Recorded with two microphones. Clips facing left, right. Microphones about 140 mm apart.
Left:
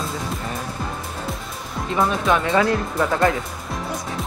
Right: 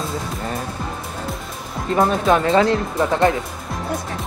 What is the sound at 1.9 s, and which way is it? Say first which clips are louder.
Speech: right 3 dB; 35° right (ahead or behind).